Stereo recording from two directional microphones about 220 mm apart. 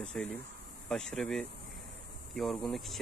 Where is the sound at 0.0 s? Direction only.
5° left (ahead or behind).